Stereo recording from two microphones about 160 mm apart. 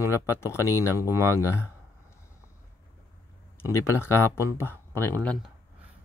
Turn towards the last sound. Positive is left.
turn(degrees=10)  # may be behind; listen again after turning